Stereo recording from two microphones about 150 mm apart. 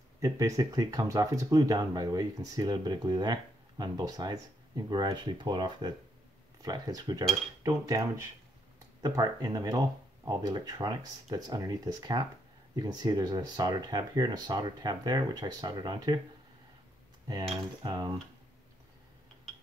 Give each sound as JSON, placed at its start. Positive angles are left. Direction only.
{"t": 0.2, "sound": "speech", "side_deg": -25}
{"t": 17.8, "sound": "speech", "side_deg": -25}